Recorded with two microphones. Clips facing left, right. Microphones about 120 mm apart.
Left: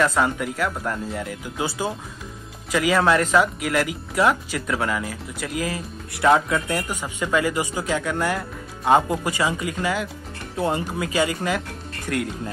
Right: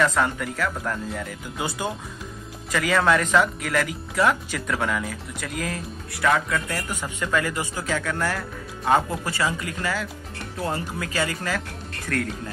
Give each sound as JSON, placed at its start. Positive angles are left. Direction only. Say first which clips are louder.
{"t": 0.0, "sound": "speech", "louder": "left 1 dB", "side_deg": 5}
{"t": 6.2, "sound": "speech", "louder": "left 4 dB", "side_deg": 25}
{"t": 6.9, "sound": "speech", "louder": "left 2 dB", "side_deg": 10}